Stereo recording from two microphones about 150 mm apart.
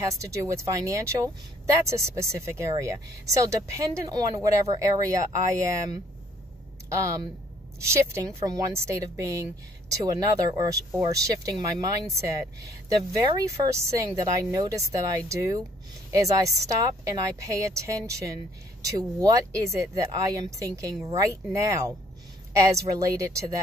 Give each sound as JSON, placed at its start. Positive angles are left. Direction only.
{"t": 0.0, "sound": "a woman's voice", "side_deg": -20}
{"t": 6.9, "sound": "a woman's voice", "side_deg": -20}
{"t": 13.3, "sound": "a woman's voice", "side_deg": -20}